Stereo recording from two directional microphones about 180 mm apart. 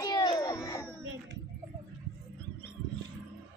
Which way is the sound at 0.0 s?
20° left (ahead or behind).